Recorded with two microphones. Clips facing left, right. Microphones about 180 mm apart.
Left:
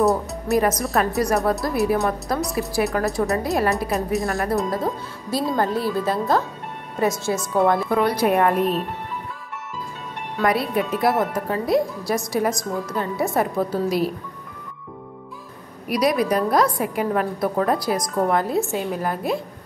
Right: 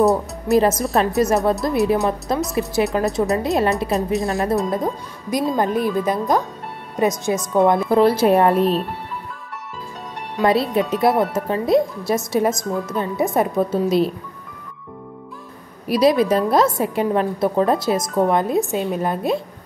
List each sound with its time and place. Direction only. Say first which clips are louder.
0.0 s speech: right 3 dB; centre (ahead or behind)
0.5 s a woman's voice: right 4 dB; 25° right (ahead or behind)
10.4 s a woman's voice: right 4 dB; 25° right (ahead or behind)
15.9 s a woman's voice: right 4 dB; 25° right (ahead or behind)